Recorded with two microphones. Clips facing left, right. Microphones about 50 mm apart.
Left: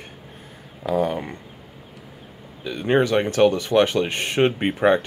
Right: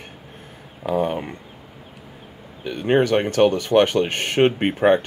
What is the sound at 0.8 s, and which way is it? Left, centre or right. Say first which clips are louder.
Speech: even; right.